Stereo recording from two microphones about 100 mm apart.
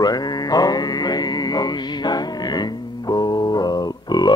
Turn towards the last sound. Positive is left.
turn(degrees=45)  # may be behind; listen again after turning